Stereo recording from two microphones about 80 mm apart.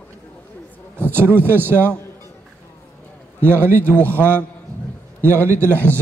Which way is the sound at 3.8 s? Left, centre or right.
Left.